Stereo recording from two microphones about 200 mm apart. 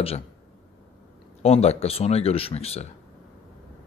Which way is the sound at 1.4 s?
30° left (ahead or behind).